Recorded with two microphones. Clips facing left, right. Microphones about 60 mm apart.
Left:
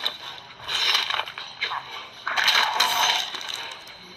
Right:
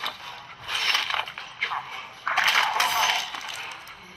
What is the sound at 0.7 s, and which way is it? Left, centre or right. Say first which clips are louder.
Crushing: left 1 dB; right.